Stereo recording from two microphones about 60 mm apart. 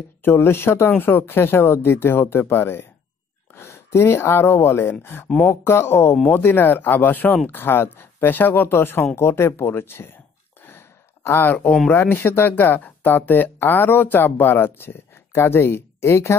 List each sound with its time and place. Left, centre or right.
0.2 s speech: left
10.6 s sigh: left
11.9 s speech: left